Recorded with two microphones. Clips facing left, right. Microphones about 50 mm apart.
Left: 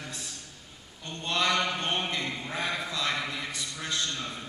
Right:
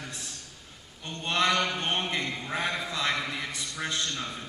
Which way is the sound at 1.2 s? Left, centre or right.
Right.